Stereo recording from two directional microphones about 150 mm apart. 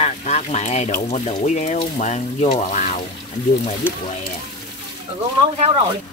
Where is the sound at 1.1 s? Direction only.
50° left (ahead or behind).